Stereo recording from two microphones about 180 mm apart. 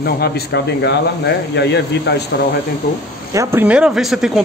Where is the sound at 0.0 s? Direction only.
65° left (ahead or behind).